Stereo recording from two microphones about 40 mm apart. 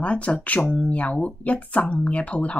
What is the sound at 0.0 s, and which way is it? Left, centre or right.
A woman's voice, left.